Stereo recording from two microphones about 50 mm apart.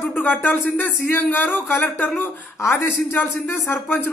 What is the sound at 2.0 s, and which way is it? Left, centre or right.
Speech, left.